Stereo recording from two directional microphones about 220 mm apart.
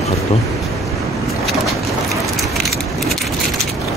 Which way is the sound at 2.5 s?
Centre (ahead or behind).